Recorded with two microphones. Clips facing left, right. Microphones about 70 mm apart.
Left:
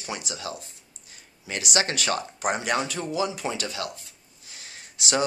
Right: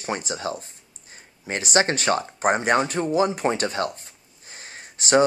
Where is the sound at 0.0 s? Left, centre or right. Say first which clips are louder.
Right 6 dB; right.